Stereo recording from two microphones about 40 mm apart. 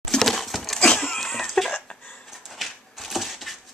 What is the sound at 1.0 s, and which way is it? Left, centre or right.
Cough, centre.